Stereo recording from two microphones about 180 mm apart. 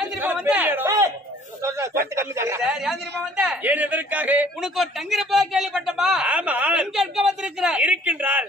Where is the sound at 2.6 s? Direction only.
Centre (ahead or behind).